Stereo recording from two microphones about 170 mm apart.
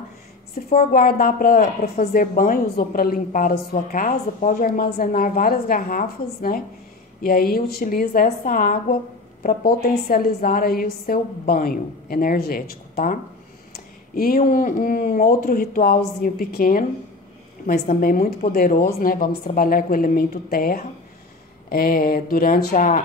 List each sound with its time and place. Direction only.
0.7 s speech: 60° left (ahead or behind)
17.8 s speech: 55° left (ahead or behind)